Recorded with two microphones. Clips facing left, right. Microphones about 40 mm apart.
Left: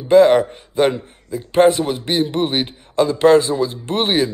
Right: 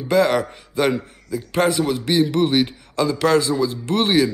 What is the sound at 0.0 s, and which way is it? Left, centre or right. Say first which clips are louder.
A man's voice: left 6 dB; left.